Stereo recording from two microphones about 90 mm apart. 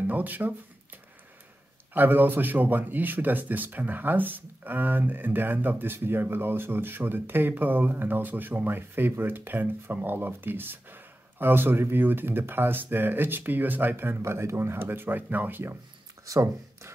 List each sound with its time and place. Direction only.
0.0 s speech: 20° right (ahead or behind)
2.0 s speech: 20° right (ahead or behind)
16.3 s speech: 35° right (ahead or behind)